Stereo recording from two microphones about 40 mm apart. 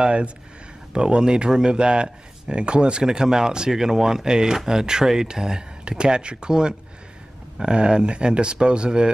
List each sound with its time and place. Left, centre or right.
0.0 s speech: right